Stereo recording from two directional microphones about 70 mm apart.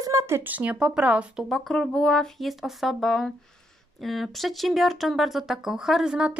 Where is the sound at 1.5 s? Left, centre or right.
Centre.